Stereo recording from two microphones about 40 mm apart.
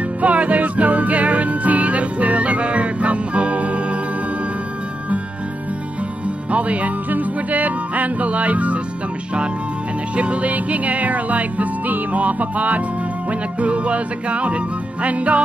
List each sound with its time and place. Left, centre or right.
0.2 s music: right
6.2 s music: right
10.1 s music: right